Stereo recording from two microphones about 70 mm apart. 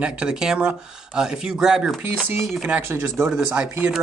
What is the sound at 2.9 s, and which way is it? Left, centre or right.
Speech, right.